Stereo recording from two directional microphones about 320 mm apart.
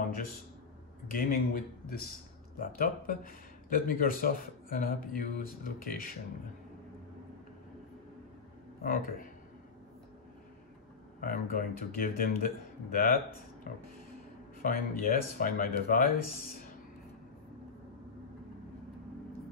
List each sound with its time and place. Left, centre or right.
1.1 s speech: left
8.8 s speech: left
11.1 s speech: left